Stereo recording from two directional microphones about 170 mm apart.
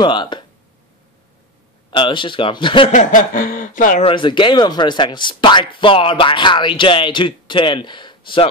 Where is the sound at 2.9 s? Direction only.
50° left (ahead or behind).